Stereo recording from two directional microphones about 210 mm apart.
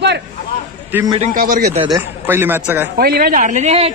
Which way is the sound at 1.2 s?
40° right (ahead or behind).